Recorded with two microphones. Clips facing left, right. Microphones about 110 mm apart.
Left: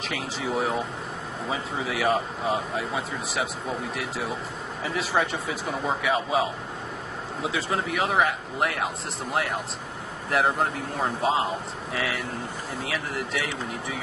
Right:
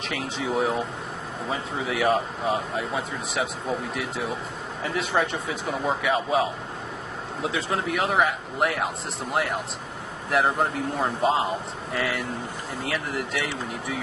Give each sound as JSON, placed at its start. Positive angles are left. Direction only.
{"t": 0.1, "sound": "speech", "side_deg": 0}
{"t": 7.4, "sound": "speech", "side_deg": 0}